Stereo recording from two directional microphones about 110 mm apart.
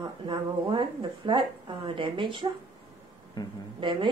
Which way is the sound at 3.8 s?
45° right (ahead or behind).